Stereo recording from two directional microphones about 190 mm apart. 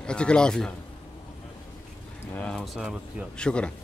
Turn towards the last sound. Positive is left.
turn(degrees=5)  # may be behind; listen again after turning